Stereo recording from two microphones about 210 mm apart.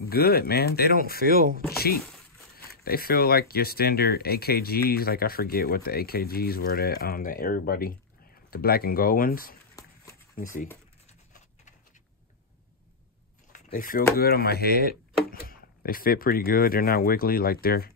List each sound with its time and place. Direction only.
0.1 s speech: 45° left (ahead or behind)
2.5 s speech: 45° left (ahead or behind)
9.8 s a sound: 15° left (ahead or behind)
10.4 s speech: 40° left (ahead or behind)
13.5 s speech: 40° left (ahead or behind)